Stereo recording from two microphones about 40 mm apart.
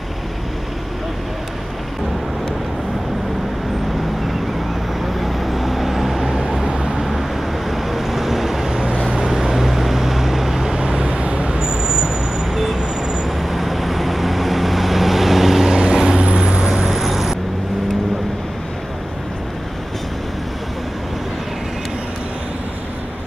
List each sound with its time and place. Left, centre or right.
5.2 s vehicle: centre
6.7 s vehicle: centre
7.7 s vehicle: centre